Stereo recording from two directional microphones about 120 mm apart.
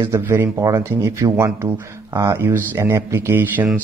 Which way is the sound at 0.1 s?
20° right (ahead or behind).